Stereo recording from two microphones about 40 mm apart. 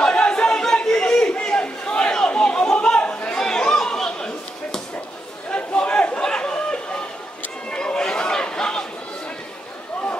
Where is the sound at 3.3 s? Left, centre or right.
Centre.